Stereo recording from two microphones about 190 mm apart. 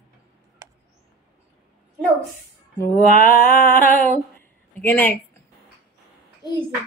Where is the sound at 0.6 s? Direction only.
20° right (ahead or behind).